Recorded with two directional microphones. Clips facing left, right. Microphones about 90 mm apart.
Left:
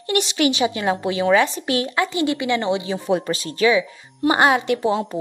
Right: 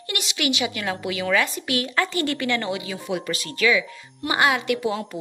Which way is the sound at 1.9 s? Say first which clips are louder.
Left 3 dB; 15° left (ahead or behind).